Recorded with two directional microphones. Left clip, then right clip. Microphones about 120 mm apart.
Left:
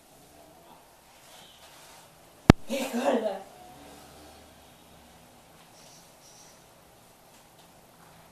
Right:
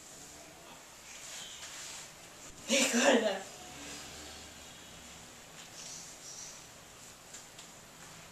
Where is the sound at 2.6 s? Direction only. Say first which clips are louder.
Right 1 dB; 10° left (ahead or behind).